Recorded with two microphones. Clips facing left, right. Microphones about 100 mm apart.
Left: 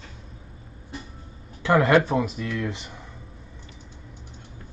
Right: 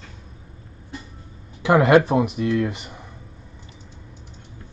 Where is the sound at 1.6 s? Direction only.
15° right (ahead or behind).